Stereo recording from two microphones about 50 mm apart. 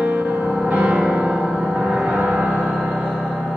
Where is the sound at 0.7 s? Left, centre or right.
Right.